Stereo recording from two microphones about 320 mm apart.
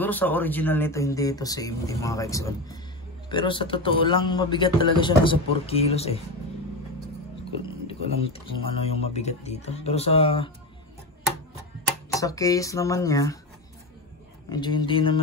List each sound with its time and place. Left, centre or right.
0.0 s a man's voice: centre
7.6 s speech: centre
12.2 s a man's voice: centre
14.5 s a man's voice: centre